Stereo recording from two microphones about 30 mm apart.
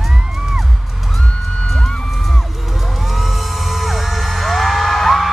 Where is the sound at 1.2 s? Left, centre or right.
Left.